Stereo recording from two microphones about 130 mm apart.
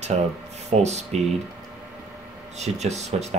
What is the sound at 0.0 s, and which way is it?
Speech, 60° right (ahead or behind).